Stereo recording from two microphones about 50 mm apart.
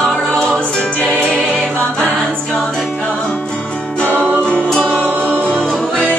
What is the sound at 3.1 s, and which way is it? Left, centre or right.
Music, left.